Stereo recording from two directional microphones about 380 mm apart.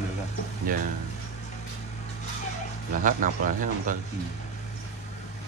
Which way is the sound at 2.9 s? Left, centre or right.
Right.